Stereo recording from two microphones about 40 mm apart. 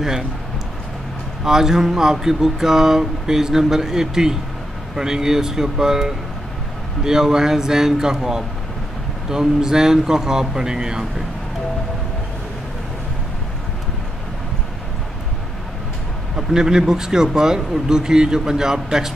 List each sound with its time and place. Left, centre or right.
1.4 s speech: centre
16.3 s speech: centre